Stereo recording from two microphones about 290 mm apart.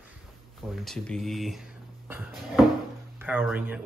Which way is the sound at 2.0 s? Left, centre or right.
Centre.